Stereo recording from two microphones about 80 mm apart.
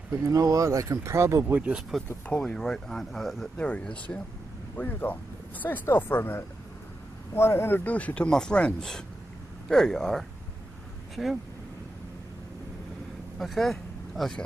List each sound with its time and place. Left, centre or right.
0.1 s speech: right
1.5 s speech: centre
2.2 s speech: centre
3.5 s speech: centre
13.4 s speech: centre